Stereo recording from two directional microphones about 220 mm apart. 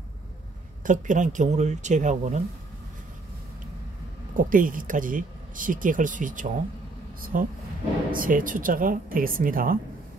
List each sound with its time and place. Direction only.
0.8 s speech: 35° right (ahead or behind)
4.4 s speech: 40° right (ahead or behind)